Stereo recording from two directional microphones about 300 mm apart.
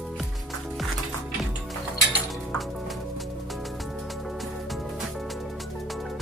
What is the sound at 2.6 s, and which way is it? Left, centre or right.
Music, centre.